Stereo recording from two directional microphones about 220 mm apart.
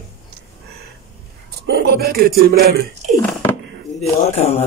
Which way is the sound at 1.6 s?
45° right (ahead or behind).